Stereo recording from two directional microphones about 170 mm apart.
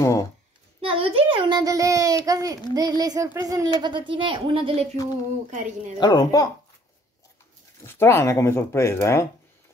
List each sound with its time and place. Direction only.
0.0 s a child's voice: 15° left (ahead or behind)
0.7 s a woman's voice: 35° right (ahead or behind)
5.9 s speech: 20° left (ahead or behind)
7.8 s speech: 15° left (ahead or behind)